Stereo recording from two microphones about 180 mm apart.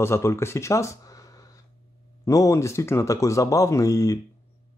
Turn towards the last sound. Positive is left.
turn(degrees=20)  # may be behind; listen again after turning